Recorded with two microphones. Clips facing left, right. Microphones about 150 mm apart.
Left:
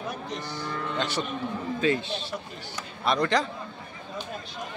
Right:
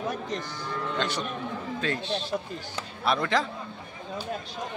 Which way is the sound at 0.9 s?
5° left (ahead or behind).